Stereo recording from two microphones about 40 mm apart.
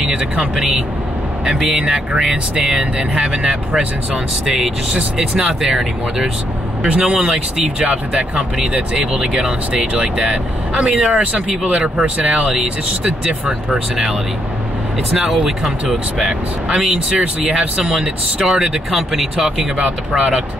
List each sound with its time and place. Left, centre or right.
1.4 s speech: centre
4.1 s speech: centre
7.8 s speech: right; by 14.1 s centre
15.4 s speech: centre
18.4 s speech: centre
20.2 s speech: centre